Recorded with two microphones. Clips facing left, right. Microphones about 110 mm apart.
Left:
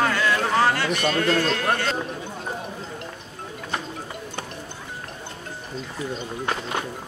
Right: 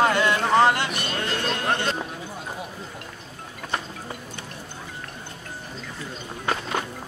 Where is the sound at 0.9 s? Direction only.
40° left (ahead or behind).